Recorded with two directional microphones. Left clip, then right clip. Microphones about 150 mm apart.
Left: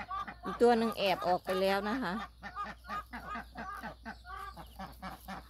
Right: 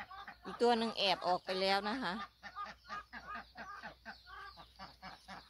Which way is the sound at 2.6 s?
20° right (ahead or behind).